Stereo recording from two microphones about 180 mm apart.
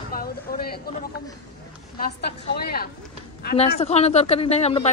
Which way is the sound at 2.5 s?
60° left (ahead or behind).